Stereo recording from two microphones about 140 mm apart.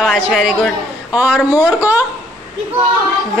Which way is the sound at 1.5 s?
15° right (ahead or behind).